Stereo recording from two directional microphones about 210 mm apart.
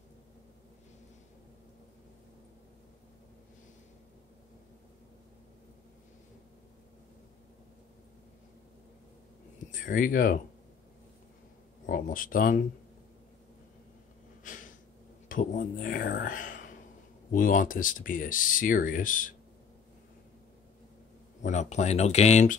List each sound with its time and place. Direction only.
9.7 s speech: 40° left (ahead or behind)
11.8 s speech: 40° left (ahead or behind)
14.4 s a sound: 40° left (ahead or behind)
15.2 s speech: 40° left (ahead or behind)
21.4 s speech: 35° left (ahead or behind)